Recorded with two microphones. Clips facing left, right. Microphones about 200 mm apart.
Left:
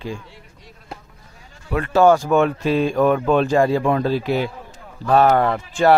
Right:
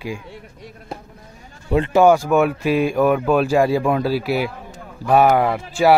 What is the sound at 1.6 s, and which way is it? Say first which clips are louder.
Speech: right 3 dB; 25° right (ahead or behind).